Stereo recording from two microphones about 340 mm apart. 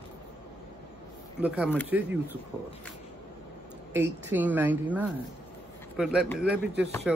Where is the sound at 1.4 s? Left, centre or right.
Centre.